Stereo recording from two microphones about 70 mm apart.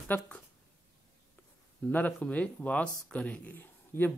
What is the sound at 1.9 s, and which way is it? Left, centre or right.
Speech, left.